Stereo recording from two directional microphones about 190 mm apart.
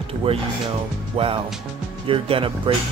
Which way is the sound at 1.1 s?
30° right (ahead or behind).